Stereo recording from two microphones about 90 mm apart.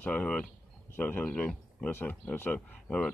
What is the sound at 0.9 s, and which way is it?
Speech, 25° left (ahead or behind).